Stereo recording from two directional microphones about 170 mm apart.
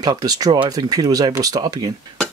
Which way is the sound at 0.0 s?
20° right (ahead or behind).